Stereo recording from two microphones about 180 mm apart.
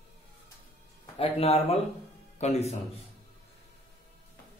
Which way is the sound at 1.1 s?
35° left (ahead or behind).